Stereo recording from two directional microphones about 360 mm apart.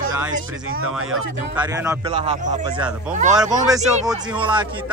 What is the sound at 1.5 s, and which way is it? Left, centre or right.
A man's voice, centre.